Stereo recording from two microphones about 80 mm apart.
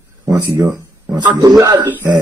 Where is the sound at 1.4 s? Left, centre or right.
Right.